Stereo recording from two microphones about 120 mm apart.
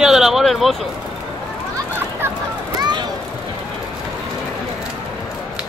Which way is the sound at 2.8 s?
35° right (ahead or behind).